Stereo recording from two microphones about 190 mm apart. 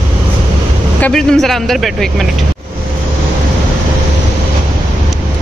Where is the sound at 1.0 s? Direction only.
5° left (ahead or behind).